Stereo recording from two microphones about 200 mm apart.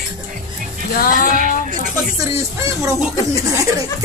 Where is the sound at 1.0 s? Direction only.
45° left (ahead or behind).